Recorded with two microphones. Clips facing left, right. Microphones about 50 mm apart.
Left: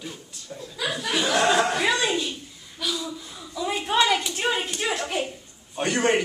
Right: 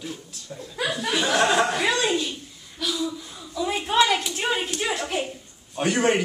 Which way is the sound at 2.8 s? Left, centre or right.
Centre.